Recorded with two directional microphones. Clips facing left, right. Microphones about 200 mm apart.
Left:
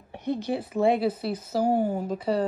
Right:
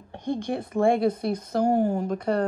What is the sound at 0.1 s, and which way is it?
A woman's voice, 5° left (ahead or behind).